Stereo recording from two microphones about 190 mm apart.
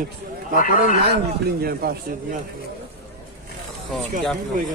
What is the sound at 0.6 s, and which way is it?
Speech, 45° left (ahead or behind).